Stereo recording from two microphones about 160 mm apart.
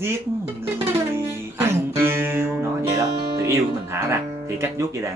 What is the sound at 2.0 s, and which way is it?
Music, 15° right (ahead or behind).